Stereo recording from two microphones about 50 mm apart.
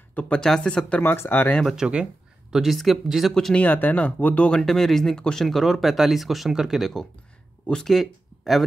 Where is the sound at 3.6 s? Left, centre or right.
Left.